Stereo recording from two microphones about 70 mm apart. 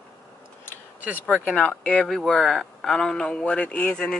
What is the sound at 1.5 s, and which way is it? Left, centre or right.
A woman's voice, centre.